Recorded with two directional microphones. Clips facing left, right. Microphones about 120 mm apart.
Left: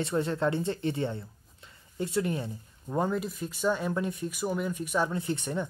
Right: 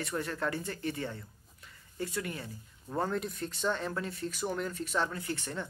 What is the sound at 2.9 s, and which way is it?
Speech, 10° left (ahead or behind).